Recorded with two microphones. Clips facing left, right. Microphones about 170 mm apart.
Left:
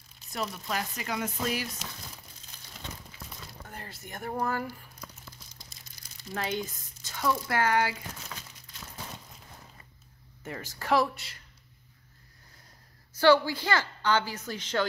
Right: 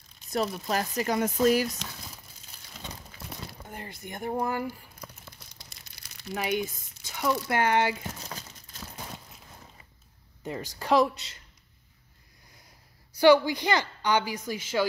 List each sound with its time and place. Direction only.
0.3 s speech: 40° right (ahead or behind)
2.5 s a sound: 10° right (ahead or behind)
3.6 s a woman's voice: 15° right (ahead or behind)
4.9 s crumpling: 65° right (ahead or behind)
6.3 s speech: 15° right (ahead or behind)
8.2 s crumpling: 35° right (ahead or behind)
10.4 s a woman's voice: 15° right (ahead or behind)
13.1 s a woman's voice: 15° right (ahead or behind)